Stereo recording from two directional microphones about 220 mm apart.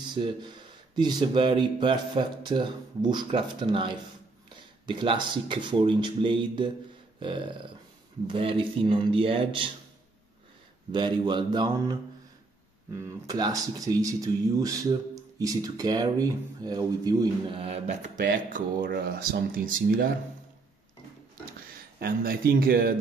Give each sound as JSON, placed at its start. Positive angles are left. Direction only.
{"t": 0.1, "sound": "speech", "side_deg": -20}
{"t": 10.9, "sound": "speech", "side_deg": -20}
{"t": 22.0, "sound": "speech", "side_deg": -40}